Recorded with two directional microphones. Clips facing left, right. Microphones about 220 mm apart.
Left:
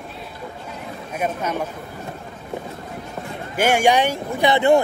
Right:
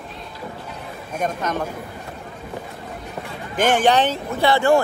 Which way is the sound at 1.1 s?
10° left (ahead or behind).